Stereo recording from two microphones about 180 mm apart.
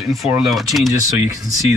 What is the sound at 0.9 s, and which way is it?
Speech, 20° right (ahead or behind).